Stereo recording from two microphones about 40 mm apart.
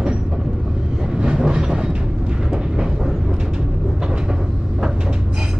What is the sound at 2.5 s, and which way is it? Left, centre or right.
Vehicle, centre.